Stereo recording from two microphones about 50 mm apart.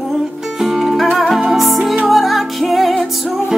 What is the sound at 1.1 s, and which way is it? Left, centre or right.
Music, centre.